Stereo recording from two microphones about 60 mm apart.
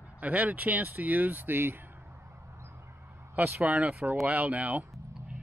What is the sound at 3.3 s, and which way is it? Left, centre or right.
Speech, right.